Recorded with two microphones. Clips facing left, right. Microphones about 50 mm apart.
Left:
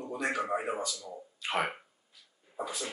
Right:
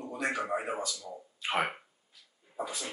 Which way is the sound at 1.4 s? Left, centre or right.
Right.